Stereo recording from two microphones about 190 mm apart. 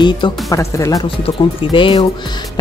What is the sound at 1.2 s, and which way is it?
Speech, 25° left (ahead or behind).